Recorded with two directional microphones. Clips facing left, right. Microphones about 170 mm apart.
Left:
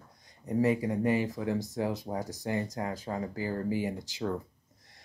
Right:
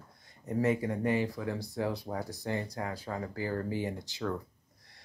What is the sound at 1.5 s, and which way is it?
Speech, 45° left (ahead or behind).